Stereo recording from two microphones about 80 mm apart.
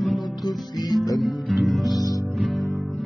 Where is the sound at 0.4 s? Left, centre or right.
Left.